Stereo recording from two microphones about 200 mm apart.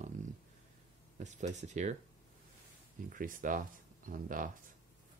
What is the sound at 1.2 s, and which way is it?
Speech, 35° right (ahead or behind).